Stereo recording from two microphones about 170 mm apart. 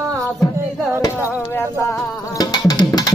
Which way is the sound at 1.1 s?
10° right (ahead or behind).